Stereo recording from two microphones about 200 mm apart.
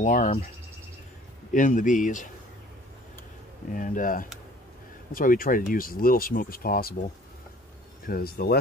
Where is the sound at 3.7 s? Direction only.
45° left (ahead or behind).